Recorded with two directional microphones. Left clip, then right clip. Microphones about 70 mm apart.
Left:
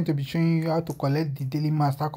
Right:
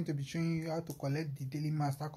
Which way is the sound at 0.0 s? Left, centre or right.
Left.